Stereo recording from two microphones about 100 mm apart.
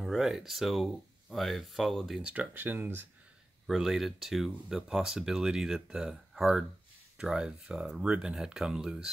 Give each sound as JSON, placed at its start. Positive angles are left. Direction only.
{"t": 0.0, "sound": "speech", "side_deg": -5}
{"t": 2.2, "sound": "speech", "side_deg": -15}
{"t": 3.6, "sound": "speech", "side_deg": -5}